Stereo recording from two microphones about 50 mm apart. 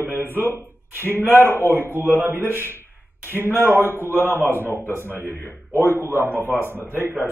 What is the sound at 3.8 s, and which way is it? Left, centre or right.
Speech, left.